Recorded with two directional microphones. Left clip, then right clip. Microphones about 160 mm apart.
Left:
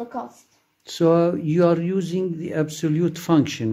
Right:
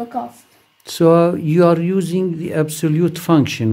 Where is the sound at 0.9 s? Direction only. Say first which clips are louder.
Right 6 dB; 15° right (ahead or behind).